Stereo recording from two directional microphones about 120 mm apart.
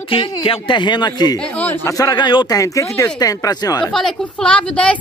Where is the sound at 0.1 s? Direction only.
45° left (ahead or behind); by 3.8 s 30° left (ahead or behind).